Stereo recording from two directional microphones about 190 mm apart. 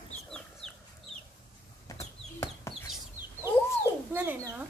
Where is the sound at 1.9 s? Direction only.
15° left (ahead or behind).